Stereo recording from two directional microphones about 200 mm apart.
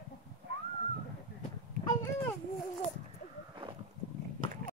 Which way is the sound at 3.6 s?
25° right (ahead or behind).